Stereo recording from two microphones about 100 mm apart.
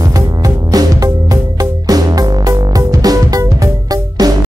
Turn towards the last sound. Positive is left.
turn(degrees=-40)  # may be behind; listen again after turning